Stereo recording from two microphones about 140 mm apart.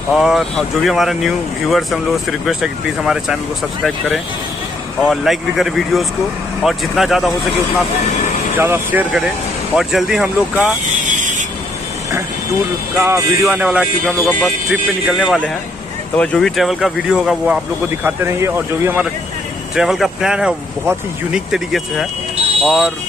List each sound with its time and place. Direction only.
0.1 s speech: centre (ahead or behind)
5.0 s speech: centre (ahead or behind)
8.5 s speech: 15° right (ahead or behind)
9.8 s speech: centre (ahead or behind)
11.1 s a sound: 65° right (ahead or behind)
12.9 s speech: 20° right (ahead or behind)
18.0 s speech: 20° right (ahead or behind)
19.7 s speech: centre (ahead or behind)